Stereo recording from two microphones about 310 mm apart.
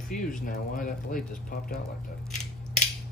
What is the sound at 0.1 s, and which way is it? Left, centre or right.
Speech, left.